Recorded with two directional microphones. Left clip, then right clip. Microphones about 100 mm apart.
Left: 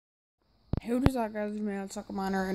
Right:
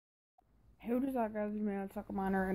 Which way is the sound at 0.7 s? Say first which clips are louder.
Left 6 dB; 30° left (ahead or behind).